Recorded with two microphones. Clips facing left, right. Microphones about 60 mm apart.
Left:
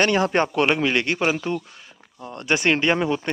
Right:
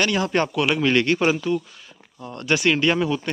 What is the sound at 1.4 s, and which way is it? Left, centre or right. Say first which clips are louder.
Speech: right 3 dB; left.